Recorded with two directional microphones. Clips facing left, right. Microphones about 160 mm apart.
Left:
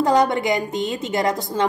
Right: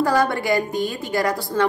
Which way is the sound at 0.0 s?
20° left (ahead or behind).